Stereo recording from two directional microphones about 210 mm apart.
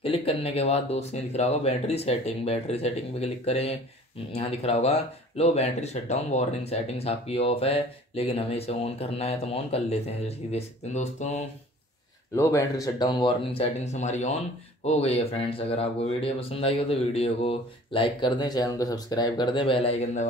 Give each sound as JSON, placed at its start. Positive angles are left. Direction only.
{"t": 0.0, "sound": "speech", "side_deg": 25}
{"t": 12.4, "sound": "speech", "side_deg": 15}